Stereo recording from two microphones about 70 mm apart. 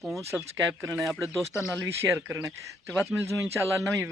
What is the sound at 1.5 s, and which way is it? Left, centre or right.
Speech, left.